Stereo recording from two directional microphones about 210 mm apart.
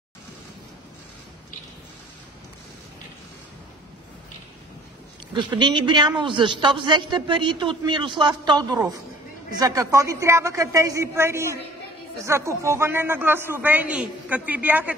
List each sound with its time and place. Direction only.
5.3 s a man's voice: 20° right (ahead or behind)